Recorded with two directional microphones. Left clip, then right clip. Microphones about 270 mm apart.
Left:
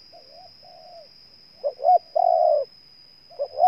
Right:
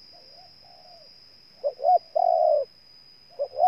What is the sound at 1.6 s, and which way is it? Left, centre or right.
Bird, centre.